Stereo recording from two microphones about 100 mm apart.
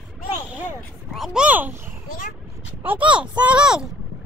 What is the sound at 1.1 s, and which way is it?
Speech, 5° right (ahead or behind).